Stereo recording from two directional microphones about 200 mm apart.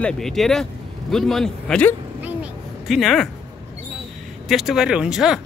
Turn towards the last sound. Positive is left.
turn(degrees=-5)  # may be behind; listen again after turning